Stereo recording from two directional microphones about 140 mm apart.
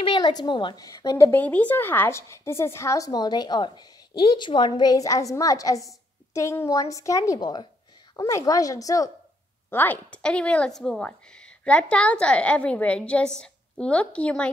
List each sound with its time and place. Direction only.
0.0 s speech: 30° left (ahead or behind)
9.7 s a woman's voice: 15° left (ahead or behind)